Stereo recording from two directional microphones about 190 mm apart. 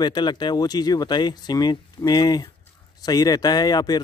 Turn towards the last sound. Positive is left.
turn(degrees=20)  # may be behind; listen again after turning